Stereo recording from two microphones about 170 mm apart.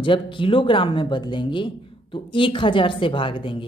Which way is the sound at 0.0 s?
30° left (ahead or behind).